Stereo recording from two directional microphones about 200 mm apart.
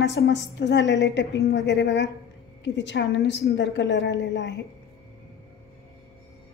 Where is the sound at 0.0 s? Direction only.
55° left (ahead or behind).